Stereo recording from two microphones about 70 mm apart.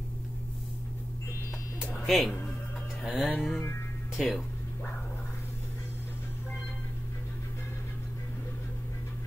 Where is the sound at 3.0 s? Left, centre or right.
Centre.